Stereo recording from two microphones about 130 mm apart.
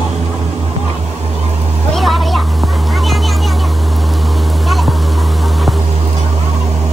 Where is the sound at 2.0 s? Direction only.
Centre (ahead or behind).